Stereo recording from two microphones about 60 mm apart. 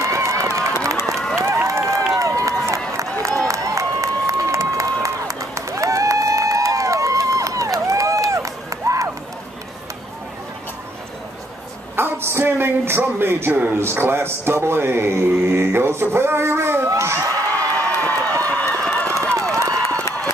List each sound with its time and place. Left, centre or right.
0.0 s run: right
1.4 s applause: right
2.1 s run: right
3.0 s a sound: right
3.4 s crowd: right
11.9 s a sound: right
13.5 s a man's voice: right
13.7 s a man's voice: right
16.9 s speech: right
17.7 s run: left
18.1 s run: right
18.5 s run: left
19.3 s a sound: right